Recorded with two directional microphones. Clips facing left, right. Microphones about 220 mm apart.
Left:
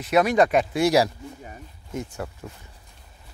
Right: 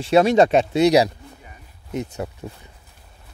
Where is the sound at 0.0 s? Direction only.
30° right (ahead or behind).